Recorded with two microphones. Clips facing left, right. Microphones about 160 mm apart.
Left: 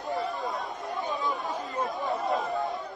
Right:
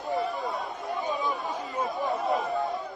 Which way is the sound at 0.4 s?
Centre (ahead or behind).